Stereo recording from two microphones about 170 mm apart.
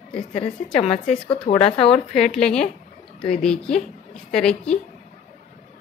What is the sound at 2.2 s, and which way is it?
Speech, 5° left (ahead or behind).